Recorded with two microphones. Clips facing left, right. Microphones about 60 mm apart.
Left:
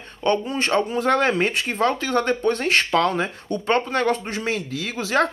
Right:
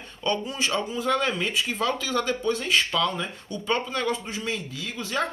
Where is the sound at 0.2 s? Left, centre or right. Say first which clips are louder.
Left 6 dB; left.